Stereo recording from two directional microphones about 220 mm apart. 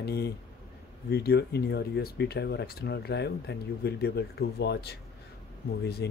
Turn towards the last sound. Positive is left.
turn(degrees=50)  # may be behind; listen again after turning